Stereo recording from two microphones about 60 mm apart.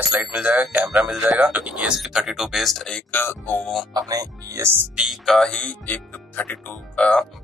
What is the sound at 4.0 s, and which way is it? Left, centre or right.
Speech, right.